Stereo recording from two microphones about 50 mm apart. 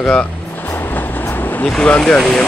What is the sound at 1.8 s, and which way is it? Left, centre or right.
Speech, centre.